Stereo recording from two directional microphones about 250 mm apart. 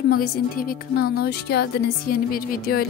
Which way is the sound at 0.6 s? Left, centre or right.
Left.